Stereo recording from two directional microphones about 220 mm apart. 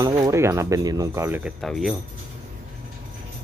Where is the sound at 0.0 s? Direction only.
15° right (ahead or behind).